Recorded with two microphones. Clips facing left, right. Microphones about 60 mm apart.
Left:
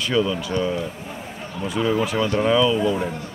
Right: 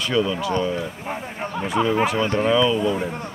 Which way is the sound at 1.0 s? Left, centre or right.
Right.